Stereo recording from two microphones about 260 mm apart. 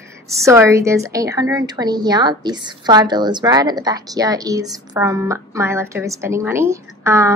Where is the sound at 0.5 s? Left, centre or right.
Centre.